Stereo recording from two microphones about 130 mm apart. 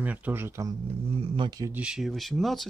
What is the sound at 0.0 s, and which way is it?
Speech, 10° right (ahead or behind).